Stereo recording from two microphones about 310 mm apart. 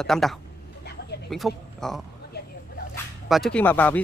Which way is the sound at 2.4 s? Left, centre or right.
Left.